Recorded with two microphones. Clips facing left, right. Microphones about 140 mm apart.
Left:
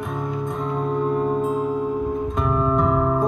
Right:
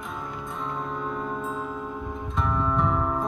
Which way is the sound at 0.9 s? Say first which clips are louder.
Left 10 dB; 55° left (ahead or behind).